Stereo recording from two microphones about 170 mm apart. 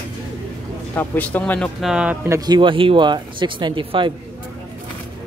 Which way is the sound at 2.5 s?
30° right (ahead or behind).